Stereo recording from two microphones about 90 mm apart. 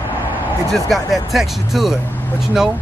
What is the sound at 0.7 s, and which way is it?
Speech, centre (ahead or behind).